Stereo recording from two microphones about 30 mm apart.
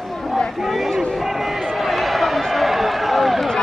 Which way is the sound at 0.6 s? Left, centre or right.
Centre.